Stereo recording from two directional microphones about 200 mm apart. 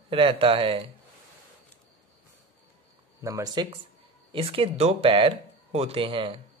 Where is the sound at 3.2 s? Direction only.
15° right (ahead or behind).